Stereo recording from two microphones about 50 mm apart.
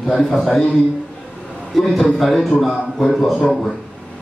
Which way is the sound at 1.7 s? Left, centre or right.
Centre.